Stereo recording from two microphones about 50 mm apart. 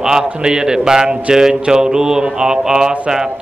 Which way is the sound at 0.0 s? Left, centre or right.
Centre.